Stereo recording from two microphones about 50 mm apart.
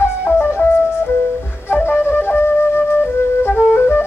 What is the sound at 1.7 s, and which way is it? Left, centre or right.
Wind instrument, left.